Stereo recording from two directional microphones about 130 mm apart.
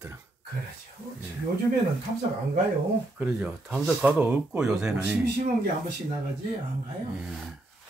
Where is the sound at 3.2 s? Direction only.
5° right (ahead or behind).